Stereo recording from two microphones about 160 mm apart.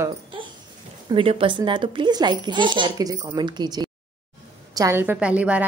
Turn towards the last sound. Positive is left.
turn(degrees=-10)  # may be behind; listen again after turning